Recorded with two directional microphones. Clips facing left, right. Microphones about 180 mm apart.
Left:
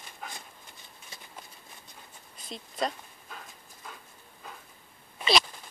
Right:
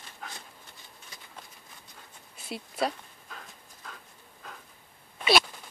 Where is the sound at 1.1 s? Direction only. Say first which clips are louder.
Left 3 dB; 25° left (ahead or behind).